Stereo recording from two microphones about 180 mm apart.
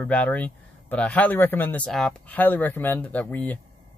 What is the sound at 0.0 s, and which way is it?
Speech, 5° left (ahead or behind).